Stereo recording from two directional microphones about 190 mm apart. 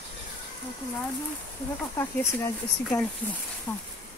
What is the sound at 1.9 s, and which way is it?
Speech, 15° left (ahead or behind).